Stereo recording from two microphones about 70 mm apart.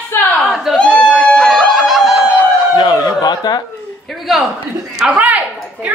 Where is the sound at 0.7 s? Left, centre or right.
Centre.